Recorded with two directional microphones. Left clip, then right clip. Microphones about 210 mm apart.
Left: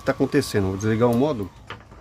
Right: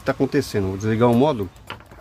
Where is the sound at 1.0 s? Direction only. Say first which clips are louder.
Right 4 dB; 10° right (ahead or behind).